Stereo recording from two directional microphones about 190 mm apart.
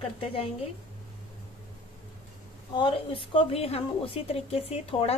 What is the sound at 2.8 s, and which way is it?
A woman's voice, 25° left (ahead or behind).